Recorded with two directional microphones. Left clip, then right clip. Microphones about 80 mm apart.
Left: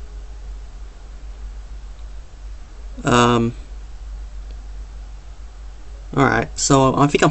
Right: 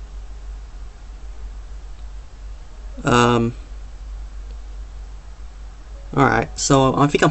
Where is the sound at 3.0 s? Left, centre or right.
Centre.